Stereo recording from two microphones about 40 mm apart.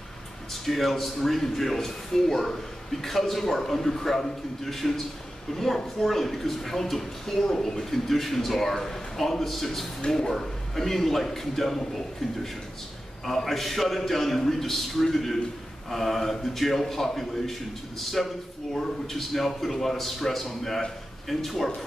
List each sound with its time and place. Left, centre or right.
0.7 s a man's voice: centre
10.0 s a man's voice: centre
13.2 s speech: centre